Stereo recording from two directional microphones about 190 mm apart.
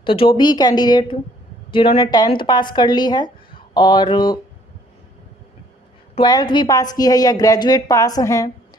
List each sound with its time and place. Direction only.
0.0 s speech: 30° left (ahead or behind)
6.1 s speech: 25° left (ahead or behind)